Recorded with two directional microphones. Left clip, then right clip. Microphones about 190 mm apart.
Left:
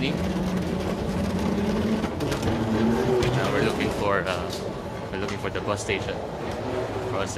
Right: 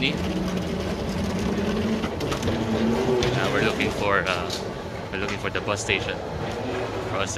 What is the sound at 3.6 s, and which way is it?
Speech, 5° left (ahead or behind).